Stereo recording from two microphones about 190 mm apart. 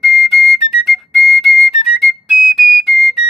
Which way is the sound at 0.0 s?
Centre (ahead or behind).